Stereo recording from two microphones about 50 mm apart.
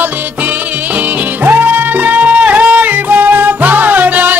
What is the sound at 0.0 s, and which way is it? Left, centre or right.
Music, right.